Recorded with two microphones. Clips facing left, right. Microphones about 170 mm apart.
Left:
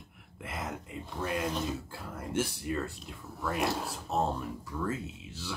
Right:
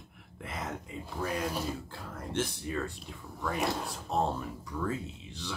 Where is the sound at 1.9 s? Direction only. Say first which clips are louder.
Left 1 dB; 5° left (ahead or behind).